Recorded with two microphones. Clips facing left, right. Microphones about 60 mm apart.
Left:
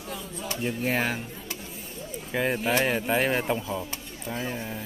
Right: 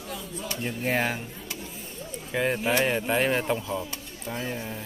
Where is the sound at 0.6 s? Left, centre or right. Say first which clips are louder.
Even; centre.